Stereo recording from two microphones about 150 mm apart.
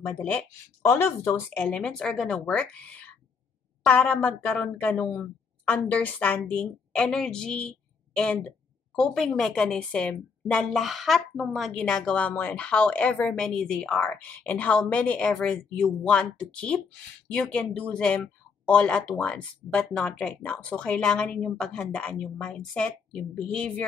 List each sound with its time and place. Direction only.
0.0 s a woman's voice: 10° left (ahead or behind)
1.7 s a woman's voice: 5° left (ahead or behind)